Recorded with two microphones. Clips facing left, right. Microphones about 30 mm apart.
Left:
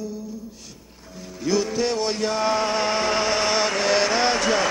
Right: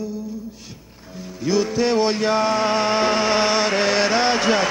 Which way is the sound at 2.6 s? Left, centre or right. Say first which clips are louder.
Right 4 dB; centre.